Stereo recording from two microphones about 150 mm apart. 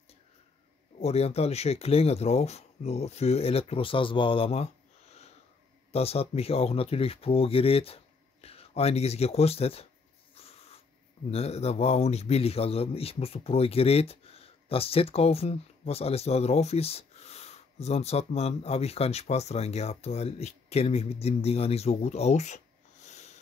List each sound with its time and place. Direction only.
0.9 s a man's voice: 45° left (ahead or behind)
5.9 s speech: 40° left (ahead or behind)
10.3 s a sound: 40° left (ahead or behind)
11.2 s a man's voice: 45° left (ahead or behind)
23.0 s sniff: 50° left (ahead or behind)